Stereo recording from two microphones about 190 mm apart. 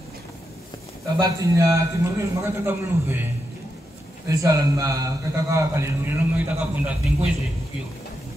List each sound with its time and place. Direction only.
1.2 s a man's voice: 15° right (ahead or behind)
4.3 s a man's voice: 15° right (ahead or behind)